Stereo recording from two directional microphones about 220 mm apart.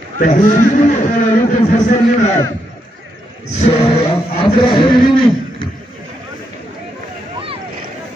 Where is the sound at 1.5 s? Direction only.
35° left (ahead or behind).